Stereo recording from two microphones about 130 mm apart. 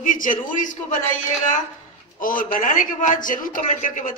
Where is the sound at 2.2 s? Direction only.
90° left.